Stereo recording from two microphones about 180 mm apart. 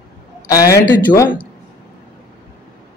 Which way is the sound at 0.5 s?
20° left (ahead or behind).